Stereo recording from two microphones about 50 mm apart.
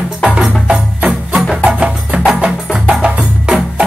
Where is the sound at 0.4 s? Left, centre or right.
Centre.